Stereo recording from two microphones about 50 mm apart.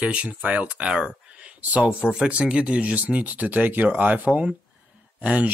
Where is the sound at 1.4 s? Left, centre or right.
Right.